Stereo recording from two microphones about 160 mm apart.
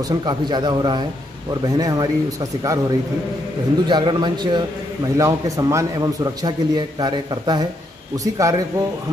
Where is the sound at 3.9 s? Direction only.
30° right (ahead or behind).